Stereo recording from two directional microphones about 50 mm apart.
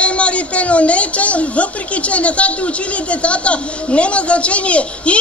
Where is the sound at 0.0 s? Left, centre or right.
Left.